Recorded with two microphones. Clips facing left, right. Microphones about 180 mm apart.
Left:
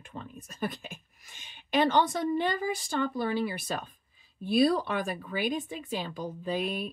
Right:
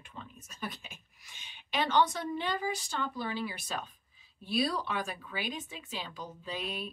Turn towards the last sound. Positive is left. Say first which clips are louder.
# left 7 dB
turn(degrees=45)  # may be behind; listen again after turning